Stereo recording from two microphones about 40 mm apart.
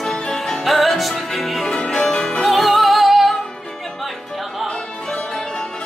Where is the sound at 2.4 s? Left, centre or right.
Centre.